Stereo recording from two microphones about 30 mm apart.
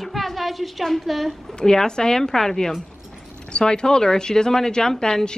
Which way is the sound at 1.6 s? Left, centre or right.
Left.